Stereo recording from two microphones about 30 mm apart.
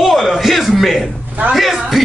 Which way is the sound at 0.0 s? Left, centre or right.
Centre.